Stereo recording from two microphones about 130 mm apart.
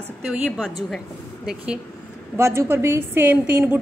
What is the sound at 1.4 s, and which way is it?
Speech, 10° right (ahead or behind).